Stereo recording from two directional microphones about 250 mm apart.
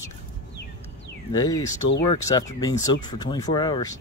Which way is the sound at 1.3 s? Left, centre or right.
Centre.